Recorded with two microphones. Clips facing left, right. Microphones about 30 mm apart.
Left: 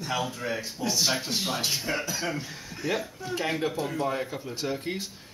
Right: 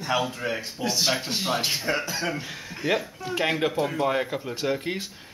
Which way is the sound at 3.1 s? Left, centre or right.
Right.